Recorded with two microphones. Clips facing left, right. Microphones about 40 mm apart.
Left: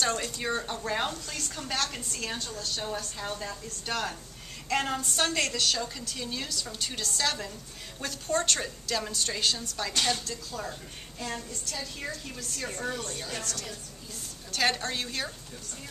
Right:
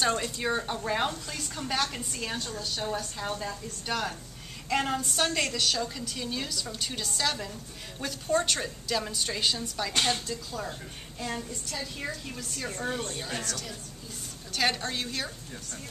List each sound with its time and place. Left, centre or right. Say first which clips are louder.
0.0 s speech: right 2 dB; centre
9.9 s speech: right 1 dB; right
10.2 s a woman's voice: right 1 dB; centre